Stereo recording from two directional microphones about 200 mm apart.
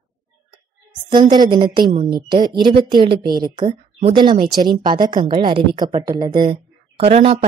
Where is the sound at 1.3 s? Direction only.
20° right (ahead or behind).